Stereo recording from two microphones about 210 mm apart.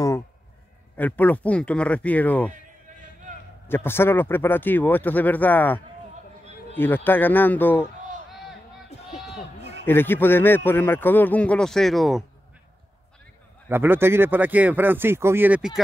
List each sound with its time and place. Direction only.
0.9 s a man's voice: 10° left (ahead or behind)
3.6 s a man's voice: 10° left (ahead or behind)
9.3 s a sound: 30° left (ahead or behind)
9.8 s a man's voice: 10° left (ahead or behind)
13.7 s speech: 10° right (ahead or behind)